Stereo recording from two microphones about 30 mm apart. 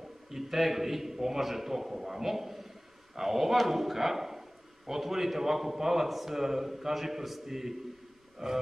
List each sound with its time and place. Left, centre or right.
0.3 s a man's voice: centre
8.4 s speech: right